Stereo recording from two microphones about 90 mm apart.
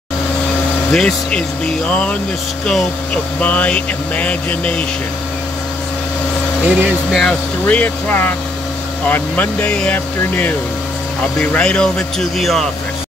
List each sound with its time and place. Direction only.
0.9 s speech: 10° left (ahead or behind)
3.3 s speech: 15° left (ahead or behind)
6.6 s speech: 15° right (ahead or behind)
7.6 s speech: 20° left (ahead or behind); by 12.6 s centre (ahead or behind)